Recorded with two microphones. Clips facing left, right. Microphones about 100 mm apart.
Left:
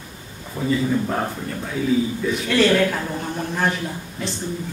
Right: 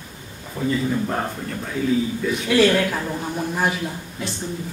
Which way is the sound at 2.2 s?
5° right (ahead or behind).